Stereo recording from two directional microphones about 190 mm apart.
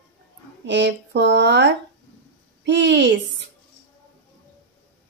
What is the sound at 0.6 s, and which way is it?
Speech, 70° right (ahead or behind).